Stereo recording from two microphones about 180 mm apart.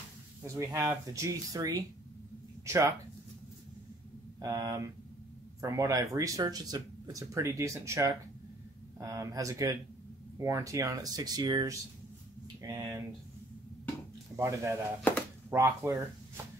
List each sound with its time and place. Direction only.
0.4 s speech: 15° right (ahead or behind)
4.4 s speech: 20° right (ahead or behind)
14.3 s speech: 15° right (ahead or behind)